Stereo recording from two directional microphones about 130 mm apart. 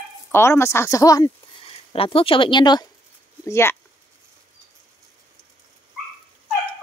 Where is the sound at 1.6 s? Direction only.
45° left (ahead or behind).